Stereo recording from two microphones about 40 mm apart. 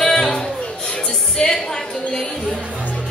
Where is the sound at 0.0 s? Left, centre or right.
Centre.